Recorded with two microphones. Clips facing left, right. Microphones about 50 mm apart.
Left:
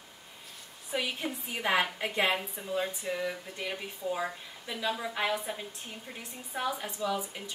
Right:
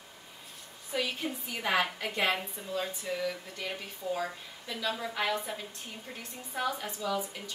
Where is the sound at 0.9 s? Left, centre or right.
Left.